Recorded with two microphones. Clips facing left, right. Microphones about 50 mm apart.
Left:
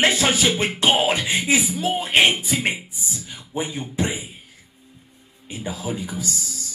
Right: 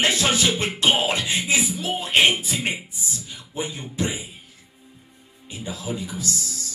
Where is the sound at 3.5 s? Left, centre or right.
Centre.